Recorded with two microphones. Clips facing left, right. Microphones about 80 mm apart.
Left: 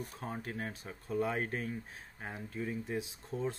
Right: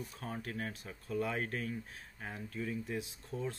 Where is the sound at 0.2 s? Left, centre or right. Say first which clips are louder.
Even; left.